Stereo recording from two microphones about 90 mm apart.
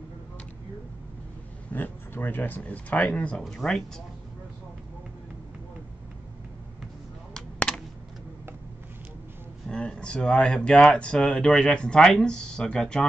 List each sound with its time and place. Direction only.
1.7 s speech: 20° left (ahead or behind); by 4.0 s centre (ahead or behind)
7.3 s a sound: 10° left (ahead or behind)
9.7 s speech: 10° left (ahead or behind)